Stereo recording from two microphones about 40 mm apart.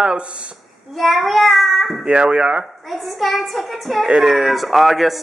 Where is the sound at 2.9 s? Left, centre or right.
Centre.